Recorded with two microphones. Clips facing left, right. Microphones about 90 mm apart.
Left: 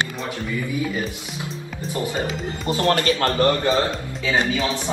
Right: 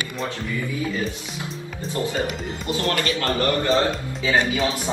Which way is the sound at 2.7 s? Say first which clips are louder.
Left 4 dB; 35° left (ahead or behind).